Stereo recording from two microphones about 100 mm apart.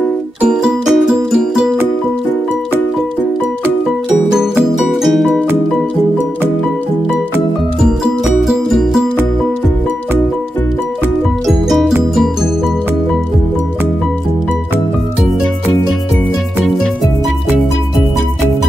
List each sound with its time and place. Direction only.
0.4 s music: 10° right (ahead or behind)
5.0 s music: centre (ahead or behind)
7.8 s music: 5° right (ahead or behind)
11.4 s music: centre (ahead or behind)
16.6 s music: centre (ahead or behind)